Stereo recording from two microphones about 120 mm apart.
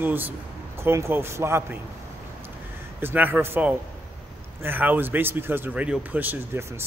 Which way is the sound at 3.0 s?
15° right (ahead or behind).